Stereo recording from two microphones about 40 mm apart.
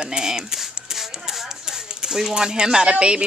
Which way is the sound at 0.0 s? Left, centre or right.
Centre.